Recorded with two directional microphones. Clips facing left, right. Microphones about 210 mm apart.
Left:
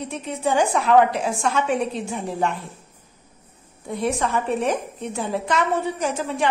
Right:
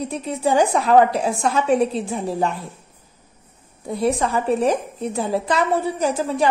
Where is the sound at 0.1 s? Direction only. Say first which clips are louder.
Right 2 dB; 35° right (ahead or behind).